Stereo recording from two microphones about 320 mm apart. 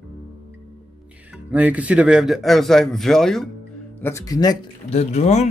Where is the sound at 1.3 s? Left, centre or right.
Centre.